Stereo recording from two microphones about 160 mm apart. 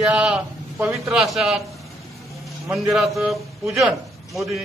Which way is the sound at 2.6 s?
Centre (ahead or behind).